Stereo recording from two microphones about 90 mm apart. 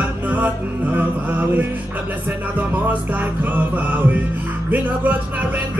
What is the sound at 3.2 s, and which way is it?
Music, 20° right (ahead or behind).